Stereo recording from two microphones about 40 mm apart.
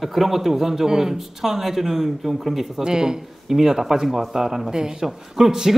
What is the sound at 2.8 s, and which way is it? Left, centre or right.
A woman's voice, centre.